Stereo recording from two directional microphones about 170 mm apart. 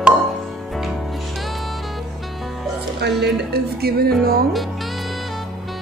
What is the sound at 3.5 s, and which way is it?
Speech, 65° right (ahead or behind).